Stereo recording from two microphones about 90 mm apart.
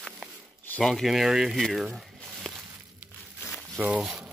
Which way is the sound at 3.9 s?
5° right (ahead or behind).